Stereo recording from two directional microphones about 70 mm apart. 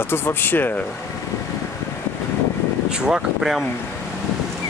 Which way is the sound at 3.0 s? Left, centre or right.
Centre.